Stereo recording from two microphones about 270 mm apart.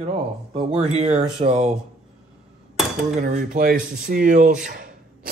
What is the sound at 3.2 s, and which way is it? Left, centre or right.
Speech, right.